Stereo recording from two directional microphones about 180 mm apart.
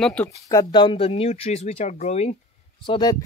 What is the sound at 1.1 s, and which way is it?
Speech, 35° left (ahead or behind).